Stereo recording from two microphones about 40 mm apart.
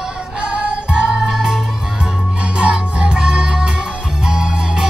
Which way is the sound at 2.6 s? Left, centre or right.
Right.